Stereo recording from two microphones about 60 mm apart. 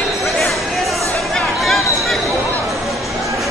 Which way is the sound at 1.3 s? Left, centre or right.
Centre.